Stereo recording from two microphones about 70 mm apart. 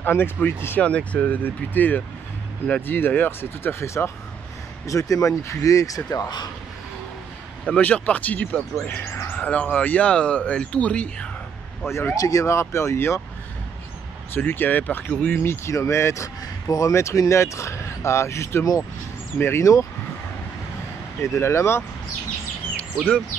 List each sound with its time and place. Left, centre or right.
0.0 s speech: left
0.8 s speech: centre; by 4.1 s left
4.8 s speech: left
7.6 s speech: centre
8.7 s speech: left
9.4 s speech: centre
11.8 s speech: left
12.2 s speech: left
14.3 s speech: left
15.3 s speech: left
16.6 s speech: left
16.9 s speech: left
21.2 s speech: left